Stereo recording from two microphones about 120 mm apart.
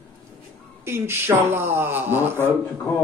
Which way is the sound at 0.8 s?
20° right (ahead or behind).